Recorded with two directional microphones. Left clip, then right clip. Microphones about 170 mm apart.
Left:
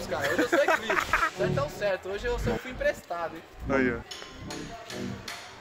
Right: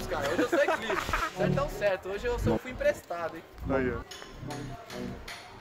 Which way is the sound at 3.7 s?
Centre (ahead or behind).